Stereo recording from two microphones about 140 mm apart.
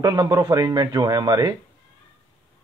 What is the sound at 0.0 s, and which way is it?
Speech, 30° right (ahead or behind).